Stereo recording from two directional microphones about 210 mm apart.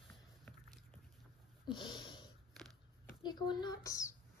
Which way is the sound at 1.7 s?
20° left (ahead or behind).